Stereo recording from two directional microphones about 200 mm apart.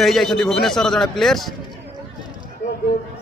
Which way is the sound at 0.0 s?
Centre (ahead or behind).